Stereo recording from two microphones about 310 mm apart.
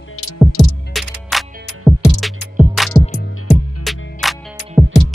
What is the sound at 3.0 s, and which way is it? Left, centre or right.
Music, left.